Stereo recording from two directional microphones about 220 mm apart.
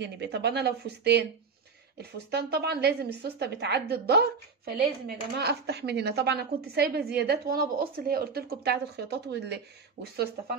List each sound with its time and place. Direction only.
0.0 s a woman's voice: 50° right (ahead or behind)